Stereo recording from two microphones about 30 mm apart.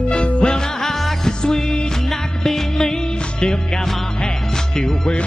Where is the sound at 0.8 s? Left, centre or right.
Centre.